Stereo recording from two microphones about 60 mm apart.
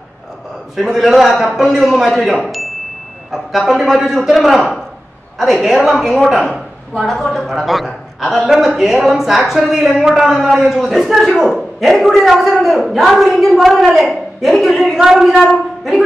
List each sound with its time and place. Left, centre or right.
0.7 s a man's voice: centre
2.4 s chime: centre
3.3 s a man's voice: centre
6.5 s a sound: centre
7.3 s a man's voice: centre